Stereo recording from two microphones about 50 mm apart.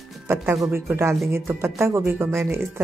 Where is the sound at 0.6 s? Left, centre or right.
Right.